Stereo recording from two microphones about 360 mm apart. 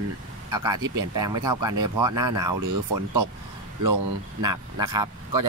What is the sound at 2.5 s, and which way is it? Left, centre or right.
Speech, right.